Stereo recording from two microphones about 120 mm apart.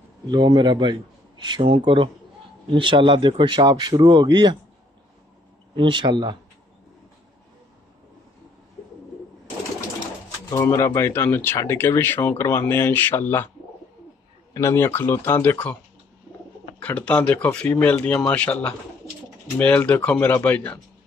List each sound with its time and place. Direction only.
0.3 s speech: 40° right (ahead or behind)
1.5 s speech: 50° right (ahead or behind)
2.8 s speech: 45° right (ahead or behind)
5.8 s speech: 40° right (ahead or behind)
10.6 s speech: 25° left (ahead or behind)
14.5 s speech: 25° left (ahead or behind)
16.8 s speech: 10° left (ahead or behind)